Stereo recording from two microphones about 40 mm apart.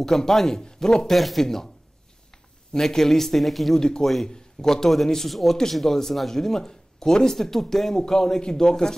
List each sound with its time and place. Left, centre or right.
0.0 s speech: centre
1.1 s speech: centre
2.7 s speech: centre
3.8 s speech: centre